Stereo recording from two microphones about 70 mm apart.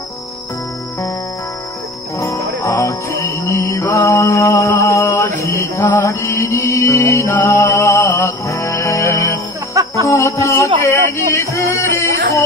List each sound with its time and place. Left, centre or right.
2.1 s music: left
4.0 s mantra: left
7.3 s music: left